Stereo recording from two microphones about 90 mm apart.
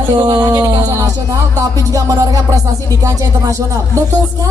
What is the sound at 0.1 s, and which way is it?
Music, 50° right (ahead or behind).